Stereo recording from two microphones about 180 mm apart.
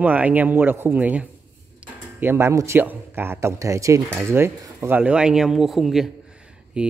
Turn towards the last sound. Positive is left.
turn(degrees=-5)  # may be behind; listen again after turning